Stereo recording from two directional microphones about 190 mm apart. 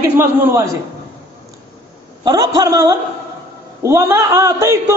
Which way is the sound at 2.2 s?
20° right (ahead or behind).